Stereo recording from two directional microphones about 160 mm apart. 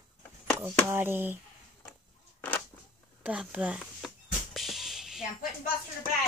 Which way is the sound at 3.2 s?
5° right (ahead or behind).